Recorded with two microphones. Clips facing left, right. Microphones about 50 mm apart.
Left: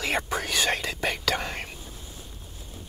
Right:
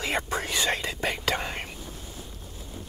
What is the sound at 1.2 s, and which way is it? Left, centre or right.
Whispering, right.